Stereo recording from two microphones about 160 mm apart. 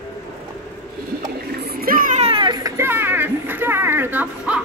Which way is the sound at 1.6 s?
70° right (ahead or behind).